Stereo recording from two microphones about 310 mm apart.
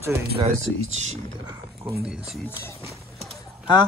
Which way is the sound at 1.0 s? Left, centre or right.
Right.